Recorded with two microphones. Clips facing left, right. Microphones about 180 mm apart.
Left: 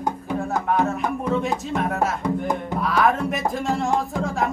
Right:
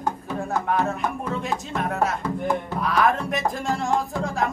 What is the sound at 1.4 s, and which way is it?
Music, centre (ahead or behind).